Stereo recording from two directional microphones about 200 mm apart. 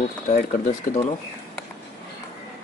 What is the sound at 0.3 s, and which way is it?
Speech, 40° left (ahead or behind).